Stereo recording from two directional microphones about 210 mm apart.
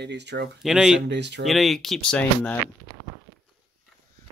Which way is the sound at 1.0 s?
55° right (ahead or behind).